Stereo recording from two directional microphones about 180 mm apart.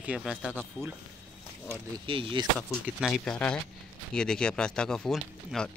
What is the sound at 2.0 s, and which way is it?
Speech, 30° right (ahead or behind).